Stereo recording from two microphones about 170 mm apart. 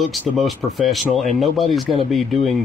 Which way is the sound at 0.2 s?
10° left (ahead or behind).